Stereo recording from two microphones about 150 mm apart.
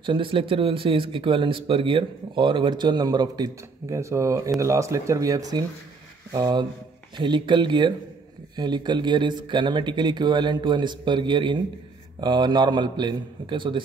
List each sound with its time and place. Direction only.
0.0 s speech: 35° right (ahead or behind)